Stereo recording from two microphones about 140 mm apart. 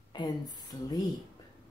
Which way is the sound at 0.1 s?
30° left (ahead or behind).